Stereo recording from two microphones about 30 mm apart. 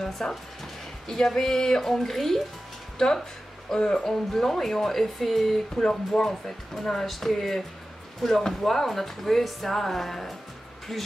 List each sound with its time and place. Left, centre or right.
0.2 s speech: centre
3.0 s speech: left
4.3 s speech: centre
5.8 s speech: left
6.2 s speech: centre